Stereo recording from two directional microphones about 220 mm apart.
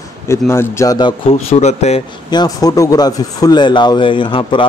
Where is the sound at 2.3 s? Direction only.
20° left (ahead or behind).